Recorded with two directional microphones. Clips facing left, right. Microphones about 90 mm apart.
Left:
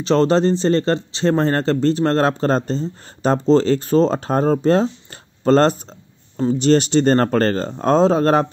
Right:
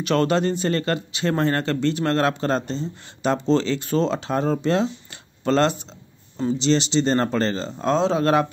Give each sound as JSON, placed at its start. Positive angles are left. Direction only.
{"t": 0.0, "sound": "speech", "side_deg": 30}